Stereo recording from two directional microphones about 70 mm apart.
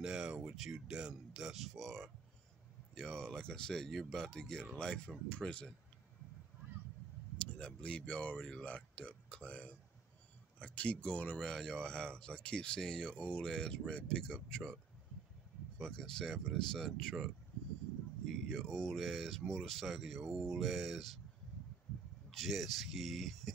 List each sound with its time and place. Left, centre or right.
0.0 s speech: centre
7.3 s speech: centre
15.8 s speech: centre
18.3 s speech: centre
22.3 s speech: centre